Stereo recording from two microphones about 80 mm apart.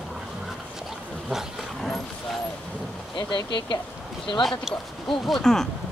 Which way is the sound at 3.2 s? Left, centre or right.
Left.